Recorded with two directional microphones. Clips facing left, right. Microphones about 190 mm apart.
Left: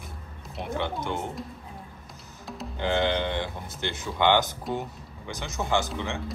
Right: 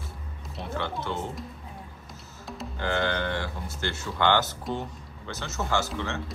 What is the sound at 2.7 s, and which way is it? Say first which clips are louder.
Music: left 3 dB; 20° left (ahead or behind).